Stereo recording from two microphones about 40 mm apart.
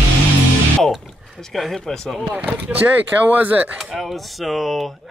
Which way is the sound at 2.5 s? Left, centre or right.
Right.